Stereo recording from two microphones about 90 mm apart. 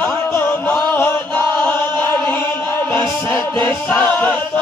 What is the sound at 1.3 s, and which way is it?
Music, 15° left (ahead or behind).